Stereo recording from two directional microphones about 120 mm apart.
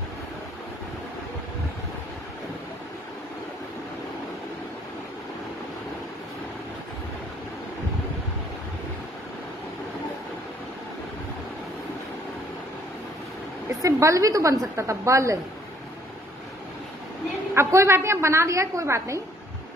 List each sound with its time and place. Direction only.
13.8 s a woman's voice: 25° right (ahead or behind)
17.6 s a woman's voice: 25° right (ahead or behind)